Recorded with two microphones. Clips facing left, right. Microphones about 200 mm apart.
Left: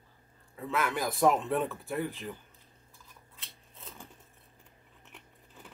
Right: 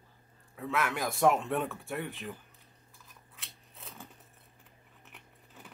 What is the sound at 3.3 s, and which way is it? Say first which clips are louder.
Scissors: right 2 dB; centre (ahead or behind).